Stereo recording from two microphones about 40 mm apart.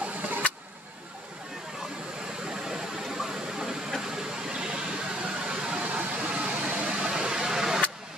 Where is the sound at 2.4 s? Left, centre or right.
Centre.